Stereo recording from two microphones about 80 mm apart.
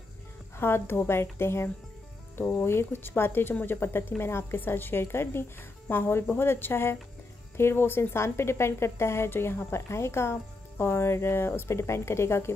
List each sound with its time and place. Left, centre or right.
0.6 s a woman's voice: left